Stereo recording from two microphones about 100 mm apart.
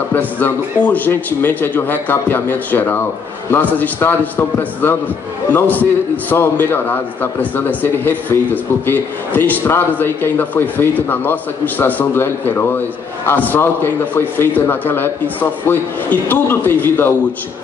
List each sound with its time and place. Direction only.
0.1 s a man's voice: 15° left (ahead or behind)